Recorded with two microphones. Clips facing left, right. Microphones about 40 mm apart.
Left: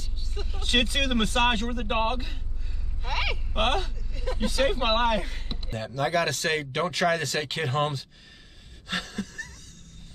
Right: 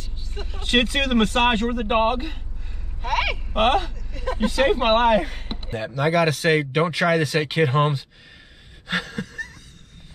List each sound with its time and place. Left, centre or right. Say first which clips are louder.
0.4 s speech: right 3 dB; right
0.8 s speech: right 6 dB; right
5.9 s speech: right 5 dB; centre
8.8 s a sound: right 5 dB; right